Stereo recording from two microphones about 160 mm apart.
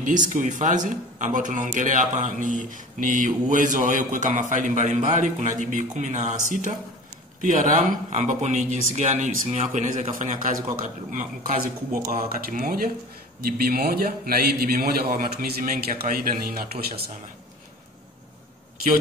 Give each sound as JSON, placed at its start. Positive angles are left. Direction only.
{"t": 0.0, "sound": "speech", "side_deg": -50}
{"t": 7.4, "sound": "a man's voice", "side_deg": -55}